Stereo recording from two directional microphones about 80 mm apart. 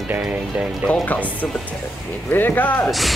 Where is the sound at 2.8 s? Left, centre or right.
Centre.